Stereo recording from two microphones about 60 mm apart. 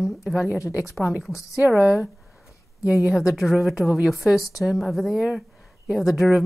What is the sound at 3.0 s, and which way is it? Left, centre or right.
A woman's voice, centre.